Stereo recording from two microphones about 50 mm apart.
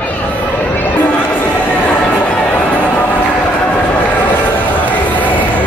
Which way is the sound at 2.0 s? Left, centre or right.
Left.